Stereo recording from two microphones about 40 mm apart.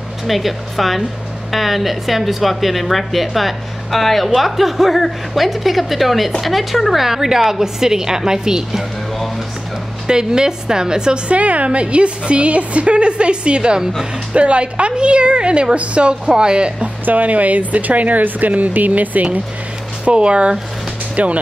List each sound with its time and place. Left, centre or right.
0.3 s a woman's voice: centre
10.0 s a woman's voice: centre
11.2 s a woman's voice: right
17.0 s speech: right
20.1 s a woman's voice: right